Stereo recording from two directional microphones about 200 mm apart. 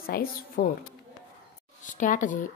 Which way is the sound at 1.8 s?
40° left (ahead or behind).